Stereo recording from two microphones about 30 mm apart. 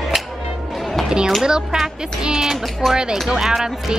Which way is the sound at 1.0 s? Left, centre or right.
Right.